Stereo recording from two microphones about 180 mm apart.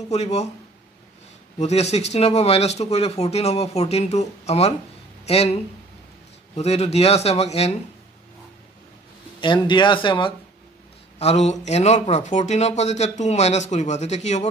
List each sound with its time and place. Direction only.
0.1 s speech: 35° left (ahead or behind)
1.6 s speech: 35° left (ahead or behind)
9.4 s speech: 25° left (ahead or behind)